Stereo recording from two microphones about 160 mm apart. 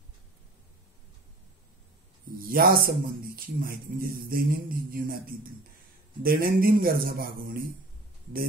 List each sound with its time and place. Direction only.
2.5 s a man's voice: 70° right (ahead or behind)